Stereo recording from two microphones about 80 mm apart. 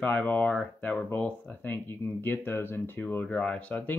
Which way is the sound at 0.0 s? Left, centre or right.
Left.